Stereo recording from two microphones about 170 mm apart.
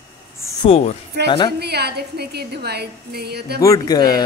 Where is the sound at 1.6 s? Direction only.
75° right (ahead or behind).